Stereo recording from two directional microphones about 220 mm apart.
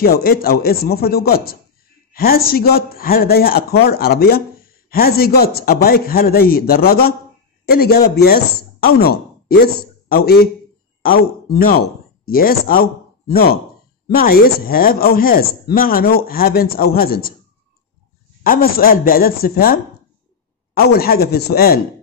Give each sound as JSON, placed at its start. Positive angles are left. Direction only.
{"t": 0.0, "sound": "speech", "side_deg": 45}
{"t": 18.4, "sound": "speech", "side_deg": 40}